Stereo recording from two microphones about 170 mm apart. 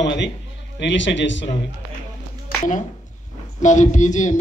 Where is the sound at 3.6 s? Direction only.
45° left (ahead or behind).